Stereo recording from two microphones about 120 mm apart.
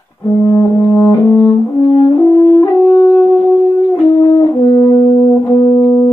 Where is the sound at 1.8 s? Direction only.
40° left (ahead or behind).